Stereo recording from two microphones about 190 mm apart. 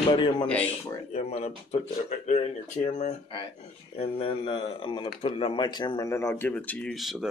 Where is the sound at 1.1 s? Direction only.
35° left (ahead or behind).